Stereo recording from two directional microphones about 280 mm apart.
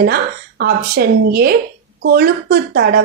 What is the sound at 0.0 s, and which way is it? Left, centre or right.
Speech, right.